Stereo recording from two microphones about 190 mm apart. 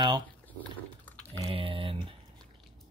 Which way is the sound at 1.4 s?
30° right (ahead or behind).